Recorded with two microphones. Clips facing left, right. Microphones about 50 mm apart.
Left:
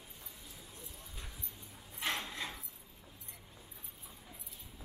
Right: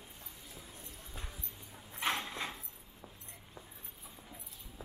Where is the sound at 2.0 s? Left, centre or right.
Right.